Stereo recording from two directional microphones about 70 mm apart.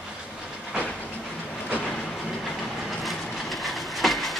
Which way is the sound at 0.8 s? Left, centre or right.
Left.